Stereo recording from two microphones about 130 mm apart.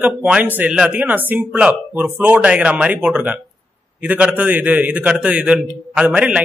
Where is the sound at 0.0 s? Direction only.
10° right (ahead or behind).